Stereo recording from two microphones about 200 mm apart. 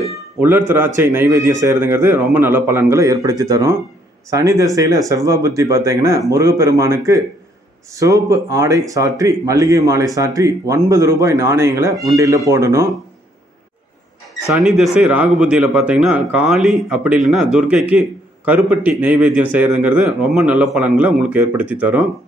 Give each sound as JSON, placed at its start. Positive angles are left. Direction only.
{"t": 0.4, "sound": "speech", "side_deg": -10}
{"t": 14.5, "sound": "speech", "side_deg": 0}